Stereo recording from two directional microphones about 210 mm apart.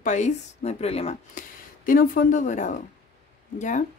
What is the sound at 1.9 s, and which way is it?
Speech, 40° left (ahead or behind).